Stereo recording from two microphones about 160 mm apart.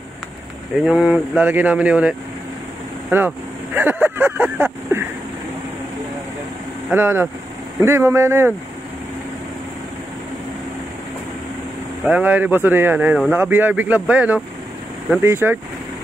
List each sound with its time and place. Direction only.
0.8 s speech: 5° right (ahead or behind)
6.9 s speech: 15° right (ahead or behind)
12.0 s speech: 10° right (ahead or behind)